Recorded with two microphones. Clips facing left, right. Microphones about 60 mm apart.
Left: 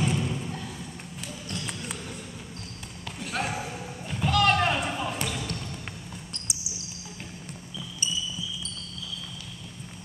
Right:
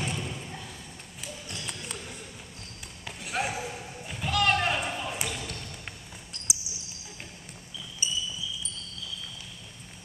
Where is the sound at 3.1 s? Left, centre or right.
Centre.